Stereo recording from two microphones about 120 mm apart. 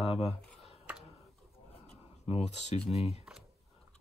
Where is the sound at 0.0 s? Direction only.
55° left (ahead or behind).